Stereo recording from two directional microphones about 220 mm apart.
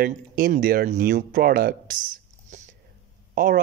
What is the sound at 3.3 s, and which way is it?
Speech, 40° right (ahead or behind).